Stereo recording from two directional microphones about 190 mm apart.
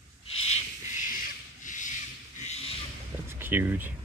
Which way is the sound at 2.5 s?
30° left (ahead or behind).